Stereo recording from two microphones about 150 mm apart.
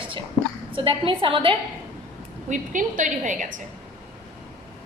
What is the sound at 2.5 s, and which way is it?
A woman's voice, 60° right (ahead or behind).